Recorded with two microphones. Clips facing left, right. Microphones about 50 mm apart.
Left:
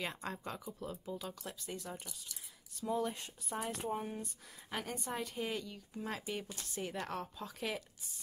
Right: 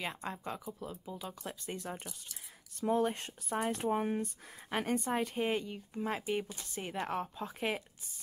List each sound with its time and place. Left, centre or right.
0.0 s speech: centre
1.4 s speech: right
2.8 s speech: right
3.8 s speech: right
4.6 s speech: right